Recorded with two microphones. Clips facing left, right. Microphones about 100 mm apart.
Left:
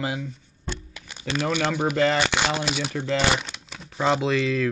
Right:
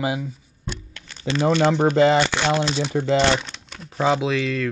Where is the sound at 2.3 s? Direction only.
15° left (ahead or behind).